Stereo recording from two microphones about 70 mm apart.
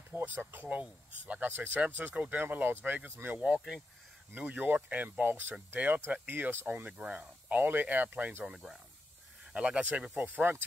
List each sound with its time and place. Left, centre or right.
0.1 s speech: right
3.3 s speech: centre; by 6.9 s right
6.9 s speech: centre
9.5 s speech: centre